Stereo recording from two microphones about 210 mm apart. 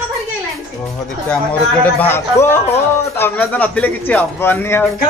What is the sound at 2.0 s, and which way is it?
A man's voice, 10° left (ahead or behind).